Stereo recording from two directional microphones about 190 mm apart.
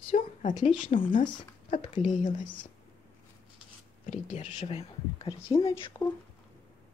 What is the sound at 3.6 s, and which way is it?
Speech, 35° left (ahead or behind).